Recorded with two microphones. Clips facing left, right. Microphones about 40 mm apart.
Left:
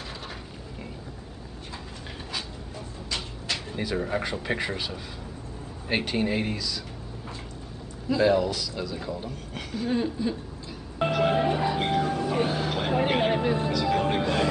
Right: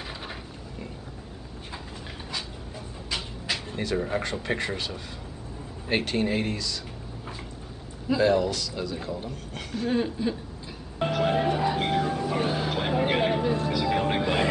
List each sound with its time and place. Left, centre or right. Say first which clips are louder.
3.1 s vehicle: right 1 dB; centre
3.8 s a man's voice: right 1 dB; centre
8.2 s a man's voice: left 1 dB; centre
11.0 s music: left 1 dB; centre
13.3 s vehicle: left 1 dB; centre
13.7 s music: even; centre